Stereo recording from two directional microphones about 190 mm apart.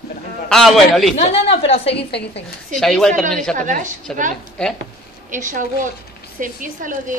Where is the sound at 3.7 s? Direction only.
40° right (ahead or behind).